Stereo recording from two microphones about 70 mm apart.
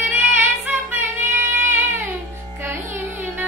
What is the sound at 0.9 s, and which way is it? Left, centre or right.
Female singing, right.